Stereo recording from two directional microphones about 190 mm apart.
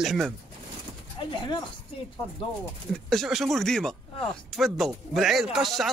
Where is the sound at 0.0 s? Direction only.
Centre (ahead or behind).